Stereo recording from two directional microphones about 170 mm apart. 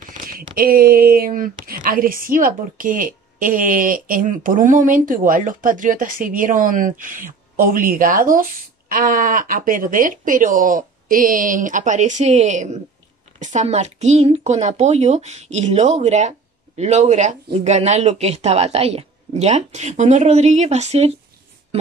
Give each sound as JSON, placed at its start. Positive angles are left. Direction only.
{"t": 0.3, "sound": "speech", "side_deg": -60}